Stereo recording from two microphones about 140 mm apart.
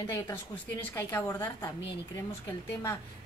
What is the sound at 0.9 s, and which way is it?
Speech, 15° left (ahead or behind).